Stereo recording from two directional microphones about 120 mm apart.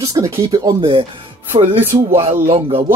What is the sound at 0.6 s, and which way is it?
Speech, 45° right (ahead or behind).